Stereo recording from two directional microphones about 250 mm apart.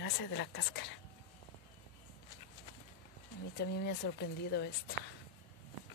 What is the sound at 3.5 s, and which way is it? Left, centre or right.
Speech, left.